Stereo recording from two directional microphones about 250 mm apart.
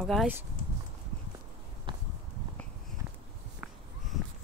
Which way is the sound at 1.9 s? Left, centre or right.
Right.